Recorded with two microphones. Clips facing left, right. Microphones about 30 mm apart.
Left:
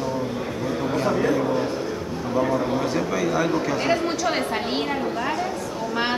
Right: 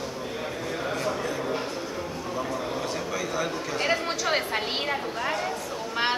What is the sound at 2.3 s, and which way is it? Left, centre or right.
Speech, left.